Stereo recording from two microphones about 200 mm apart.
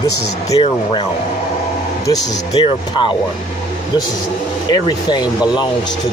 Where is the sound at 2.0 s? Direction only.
20° left (ahead or behind).